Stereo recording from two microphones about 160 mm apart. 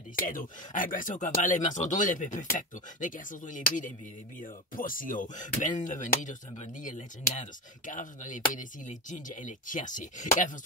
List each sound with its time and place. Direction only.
0.3 s speech: 60° left (ahead or behind)